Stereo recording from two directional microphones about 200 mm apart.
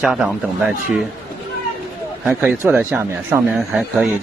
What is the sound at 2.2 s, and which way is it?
Speech, 5° right (ahead or behind).